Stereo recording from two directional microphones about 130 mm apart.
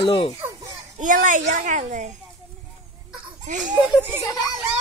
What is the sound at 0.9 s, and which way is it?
A woman's voice, 85° right.